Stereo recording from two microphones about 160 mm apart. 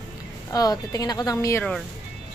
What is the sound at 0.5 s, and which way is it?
A woman's voice, 25° left (ahead or behind).